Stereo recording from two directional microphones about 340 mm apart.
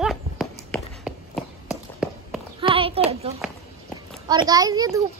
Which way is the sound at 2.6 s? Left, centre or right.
Centre.